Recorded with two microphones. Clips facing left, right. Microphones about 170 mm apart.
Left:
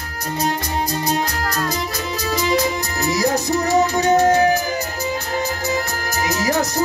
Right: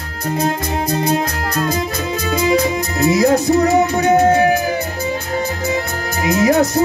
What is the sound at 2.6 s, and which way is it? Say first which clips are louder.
Music: right 5 dB; 25° right (ahead or behind).